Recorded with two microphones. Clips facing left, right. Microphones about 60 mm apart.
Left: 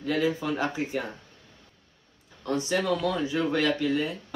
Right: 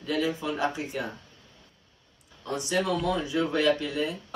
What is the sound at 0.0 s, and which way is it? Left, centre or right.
Speech, left.